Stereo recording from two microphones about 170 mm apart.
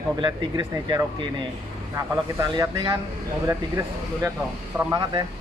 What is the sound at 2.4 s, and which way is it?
Speech, 25° right (ahead or behind).